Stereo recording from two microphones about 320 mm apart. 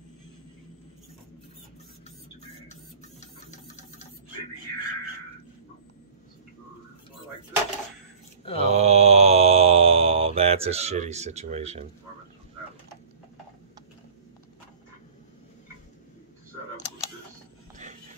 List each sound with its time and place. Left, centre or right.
2.7 s printer: left
8.5 s mantra: centre